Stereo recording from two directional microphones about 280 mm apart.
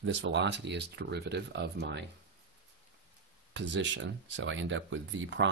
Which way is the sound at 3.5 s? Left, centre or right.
Right.